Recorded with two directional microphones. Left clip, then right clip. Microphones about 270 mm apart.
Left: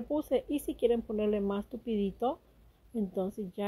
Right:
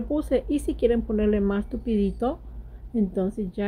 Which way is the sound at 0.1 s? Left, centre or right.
Centre.